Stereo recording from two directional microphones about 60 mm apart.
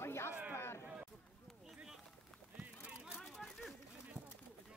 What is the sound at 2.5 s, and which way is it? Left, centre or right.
Run, centre.